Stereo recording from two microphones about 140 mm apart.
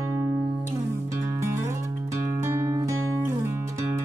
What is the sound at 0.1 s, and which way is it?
Music, 20° right (ahead or behind).